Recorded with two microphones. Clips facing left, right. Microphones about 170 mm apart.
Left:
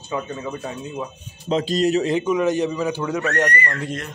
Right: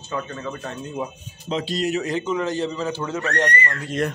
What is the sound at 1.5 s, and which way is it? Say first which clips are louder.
Speech: left 5 dB; 40° left (ahead or behind).